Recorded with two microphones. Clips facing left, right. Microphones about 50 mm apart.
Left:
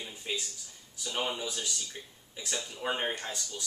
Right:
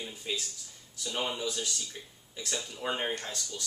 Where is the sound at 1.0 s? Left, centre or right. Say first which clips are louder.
Right 1 dB; centre.